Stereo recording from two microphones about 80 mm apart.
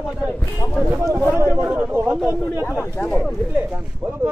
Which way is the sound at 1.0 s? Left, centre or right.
Right.